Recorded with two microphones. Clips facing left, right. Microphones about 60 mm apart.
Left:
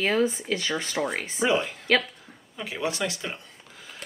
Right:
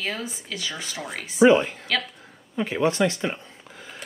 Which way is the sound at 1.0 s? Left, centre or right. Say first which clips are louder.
Left 7 dB; left.